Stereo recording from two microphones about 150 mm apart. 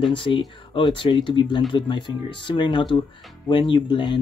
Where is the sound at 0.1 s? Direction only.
35° left (ahead or behind).